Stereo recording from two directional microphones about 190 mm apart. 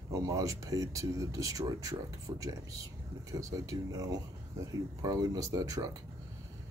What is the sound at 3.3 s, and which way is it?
Speech, 15° right (ahead or behind).